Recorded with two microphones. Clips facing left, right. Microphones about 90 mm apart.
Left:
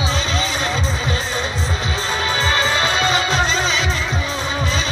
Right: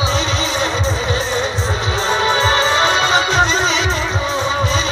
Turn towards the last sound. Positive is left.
turn(degrees=-30)  # may be behind; listen again after turning